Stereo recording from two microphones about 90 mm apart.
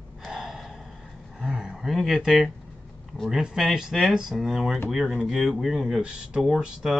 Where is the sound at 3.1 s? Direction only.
Centre (ahead or behind).